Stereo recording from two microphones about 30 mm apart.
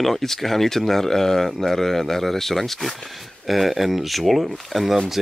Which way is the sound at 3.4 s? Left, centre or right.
Centre.